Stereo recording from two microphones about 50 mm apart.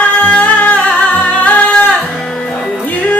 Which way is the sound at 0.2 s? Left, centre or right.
Left.